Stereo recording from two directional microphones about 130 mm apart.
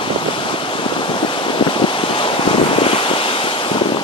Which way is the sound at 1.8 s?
40° left (ahead or behind).